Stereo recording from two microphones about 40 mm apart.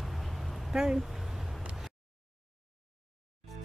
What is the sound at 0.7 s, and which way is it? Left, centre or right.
Speech, centre.